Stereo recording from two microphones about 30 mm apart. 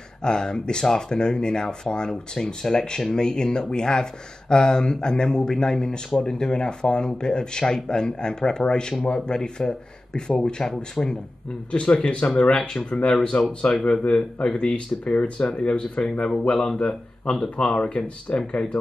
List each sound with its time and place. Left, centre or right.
0.2 s speech: left
11.0 s speech: left
12.4 s speech: left
14.0 s speech: left
17.8 s speech: left